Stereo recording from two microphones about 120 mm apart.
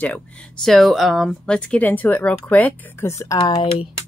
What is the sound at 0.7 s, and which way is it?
Speech, centre (ahead or behind).